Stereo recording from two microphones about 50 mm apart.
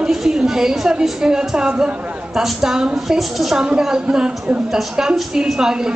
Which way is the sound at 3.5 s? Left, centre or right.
Centre.